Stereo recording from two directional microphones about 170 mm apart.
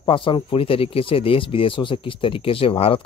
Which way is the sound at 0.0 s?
30° left (ahead or behind).